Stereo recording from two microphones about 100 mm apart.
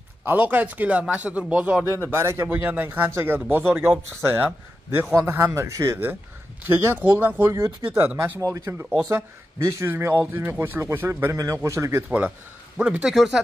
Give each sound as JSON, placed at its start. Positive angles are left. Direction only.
{"t": 0.2, "sound": "speech", "side_deg": -20}
{"t": 2.0, "sound": "a man's voice", "side_deg": -25}
{"t": 11.3, "sound": "a man's voice", "side_deg": -30}
{"t": 13.0, "sound": "speech", "side_deg": 0}